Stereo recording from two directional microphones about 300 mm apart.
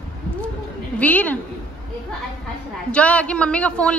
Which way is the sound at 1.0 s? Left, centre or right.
Centre.